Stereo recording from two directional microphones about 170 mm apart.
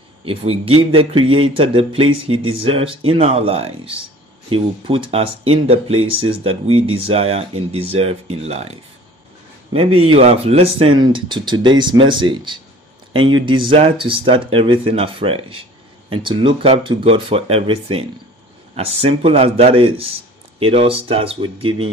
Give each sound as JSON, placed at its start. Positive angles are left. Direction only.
{"t": 0.2, "sound": "speech", "side_deg": -35}